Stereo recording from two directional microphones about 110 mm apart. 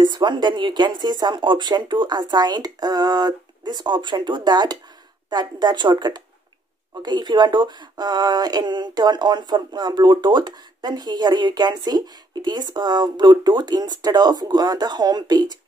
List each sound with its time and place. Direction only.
0.0 s speech: 40° right (ahead or behind)